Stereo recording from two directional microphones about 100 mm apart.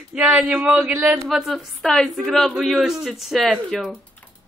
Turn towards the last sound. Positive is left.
turn(degrees=0)  # may be behind; listen again after turning